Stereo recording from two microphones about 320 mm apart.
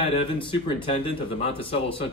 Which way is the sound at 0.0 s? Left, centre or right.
Centre.